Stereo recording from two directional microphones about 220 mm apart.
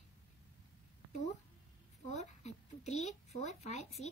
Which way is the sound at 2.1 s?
30° left (ahead or behind).